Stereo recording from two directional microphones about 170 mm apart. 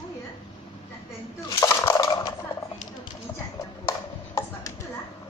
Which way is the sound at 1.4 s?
20° left (ahead or behind).